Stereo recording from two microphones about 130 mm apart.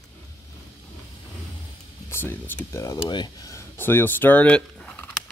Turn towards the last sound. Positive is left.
turn(degrees=10)  # may be behind; listen again after turning